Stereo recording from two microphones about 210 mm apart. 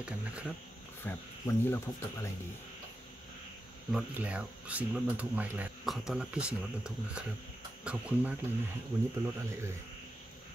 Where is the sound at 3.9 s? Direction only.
5° right (ahead or behind).